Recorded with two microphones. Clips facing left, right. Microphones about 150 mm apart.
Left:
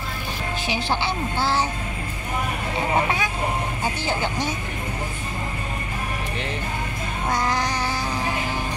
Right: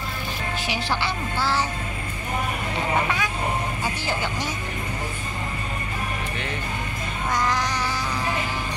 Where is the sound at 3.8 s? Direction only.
25° left (ahead or behind).